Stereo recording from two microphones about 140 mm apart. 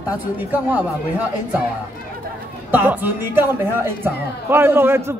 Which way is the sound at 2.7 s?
10° right (ahead or behind).